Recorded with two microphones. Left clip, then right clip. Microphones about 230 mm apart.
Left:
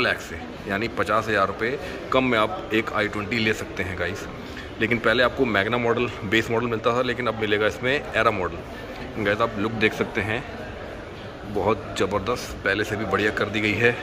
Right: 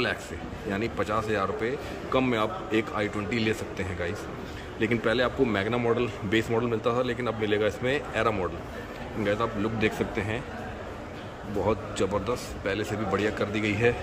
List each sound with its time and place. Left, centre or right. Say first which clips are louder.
0.7 s a man's voice: left 5 dB; centre
11.6 s speech: left 4 dB; centre